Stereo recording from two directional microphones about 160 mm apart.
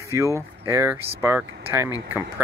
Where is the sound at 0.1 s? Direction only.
20° right (ahead or behind).